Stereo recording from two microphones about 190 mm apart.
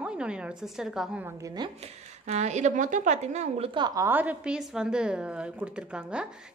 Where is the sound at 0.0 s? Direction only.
5° right (ahead or behind).